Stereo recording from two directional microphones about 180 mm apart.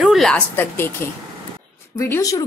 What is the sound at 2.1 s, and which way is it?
Speech, 20° left (ahead or behind).